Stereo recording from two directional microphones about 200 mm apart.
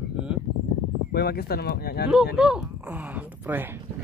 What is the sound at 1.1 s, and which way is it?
Speech, 50° left (ahead or behind).